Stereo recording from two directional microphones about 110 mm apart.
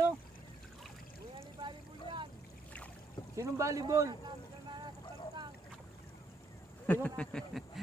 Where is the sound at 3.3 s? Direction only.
30° right (ahead or behind).